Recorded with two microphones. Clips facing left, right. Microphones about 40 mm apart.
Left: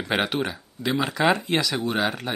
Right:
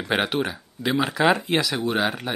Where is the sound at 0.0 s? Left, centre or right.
Centre.